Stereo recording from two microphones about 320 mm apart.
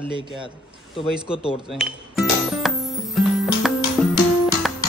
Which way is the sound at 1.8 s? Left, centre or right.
Centre.